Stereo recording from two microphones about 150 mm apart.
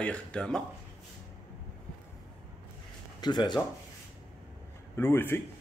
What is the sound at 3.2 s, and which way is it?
Speech, 30° left (ahead or behind).